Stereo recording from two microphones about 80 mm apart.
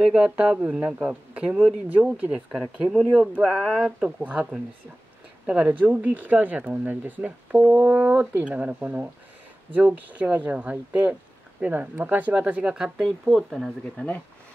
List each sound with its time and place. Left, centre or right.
0.0 s speech: centre
2.5 s speech: centre
5.5 s speech: centre
13.9 s speech: centre